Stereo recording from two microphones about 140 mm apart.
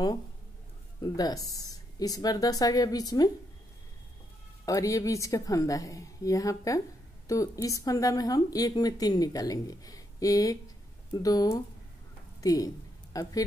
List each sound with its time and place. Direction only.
1.0 s speech: 25° left (ahead or behind)
4.6 s speech: 25° left (ahead or behind)
12.4 s a sound: 25° left (ahead or behind)